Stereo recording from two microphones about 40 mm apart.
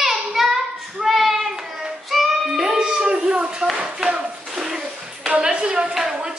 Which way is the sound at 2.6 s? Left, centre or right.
Centre.